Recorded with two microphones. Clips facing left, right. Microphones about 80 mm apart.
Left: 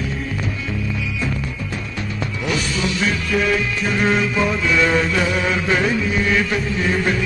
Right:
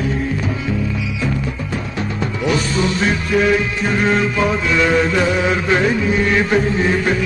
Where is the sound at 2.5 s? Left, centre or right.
Right.